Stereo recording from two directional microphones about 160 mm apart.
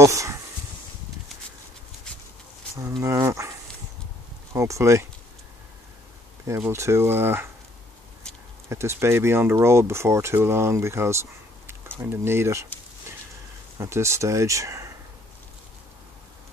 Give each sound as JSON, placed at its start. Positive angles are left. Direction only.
{"t": 0.0, "sound": "speech", "side_deg": -20}
{"t": 2.8, "sound": "speech", "side_deg": -20}
{"t": 4.6, "sound": "speech", "side_deg": -20}
{"t": 6.4, "sound": "speech", "side_deg": -15}
{"t": 8.6, "sound": "speech", "side_deg": -15}
{"t": 13.7, "sound": "speech", "side_deg": -15}